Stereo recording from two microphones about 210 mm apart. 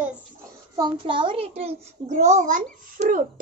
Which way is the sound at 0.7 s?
20° right (ahead or behind).